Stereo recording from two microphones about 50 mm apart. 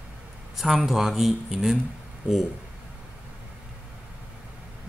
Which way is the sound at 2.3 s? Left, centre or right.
Right.